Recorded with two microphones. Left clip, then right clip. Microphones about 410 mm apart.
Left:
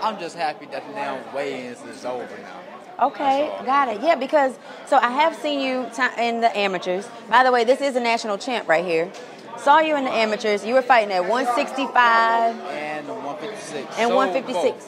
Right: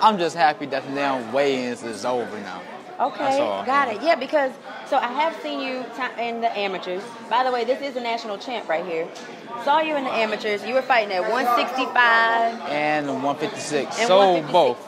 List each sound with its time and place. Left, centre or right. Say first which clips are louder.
0.0 s a man's voice: right 7 dB; right
3.0 s a woman's voice: left 2 dB; centre
12.7 s speech: right 7 dB; right
14.0 s a man's voice: right 3 dB; right